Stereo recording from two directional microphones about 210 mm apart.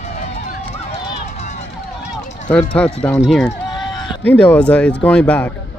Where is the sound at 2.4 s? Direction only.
5° left (ahead or behind).